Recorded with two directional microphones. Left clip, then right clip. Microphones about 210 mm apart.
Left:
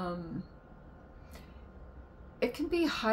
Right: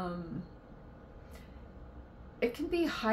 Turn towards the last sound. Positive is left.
turn(degrees=20)  # may be behind; listen again after turning